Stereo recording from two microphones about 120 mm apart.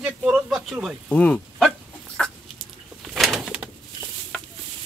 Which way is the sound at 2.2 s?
5° left (ahead or behind).